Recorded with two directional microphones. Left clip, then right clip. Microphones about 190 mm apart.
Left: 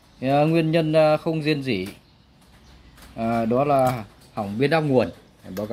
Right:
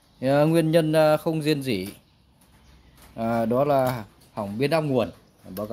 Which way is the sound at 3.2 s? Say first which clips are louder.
Left 1 dB; 15° right (ahead or behind).